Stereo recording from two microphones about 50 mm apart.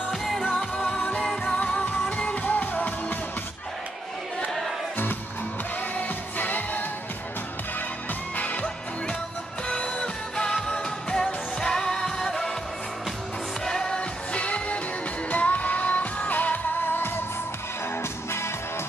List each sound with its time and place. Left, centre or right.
0.1 s music: centre
0.5 s music: centre; by 3.2 s left
5.9 s music of asia: left
8.4 s music: left; by 12.5 s centre
13.7 s music: centre; by 17.1 s left